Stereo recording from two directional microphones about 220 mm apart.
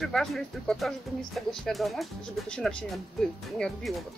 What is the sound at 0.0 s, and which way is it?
Speech, centre (ahead or behind).